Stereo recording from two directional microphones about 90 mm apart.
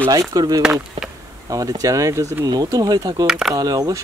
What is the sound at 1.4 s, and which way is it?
Speech, 40° right (ahead or behind).